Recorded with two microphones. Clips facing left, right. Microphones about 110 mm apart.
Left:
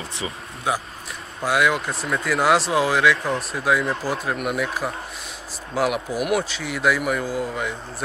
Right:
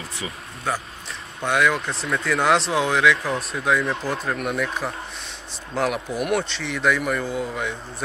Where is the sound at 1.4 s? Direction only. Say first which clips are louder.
Even; 5° left (ahead or behind).